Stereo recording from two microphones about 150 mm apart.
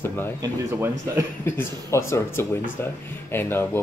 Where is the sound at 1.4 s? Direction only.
20° left (ahead or behind).